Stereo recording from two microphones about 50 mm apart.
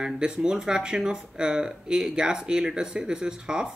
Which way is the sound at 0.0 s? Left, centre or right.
Centre.